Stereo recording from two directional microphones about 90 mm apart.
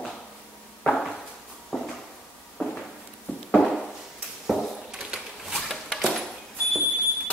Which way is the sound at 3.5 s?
Centre (ahead or behind).